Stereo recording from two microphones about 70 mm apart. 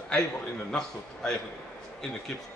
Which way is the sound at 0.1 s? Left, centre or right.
Centre.